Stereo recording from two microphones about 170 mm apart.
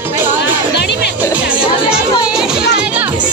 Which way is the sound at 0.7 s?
90° left.